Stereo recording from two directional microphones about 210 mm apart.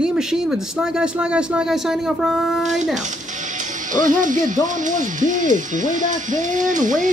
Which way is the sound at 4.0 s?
40° right (ahead or behind).